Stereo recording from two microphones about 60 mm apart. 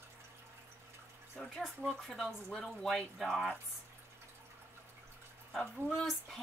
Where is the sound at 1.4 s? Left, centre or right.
Centre.